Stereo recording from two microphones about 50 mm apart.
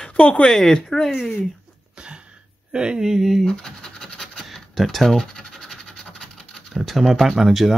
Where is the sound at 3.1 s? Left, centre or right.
Centre.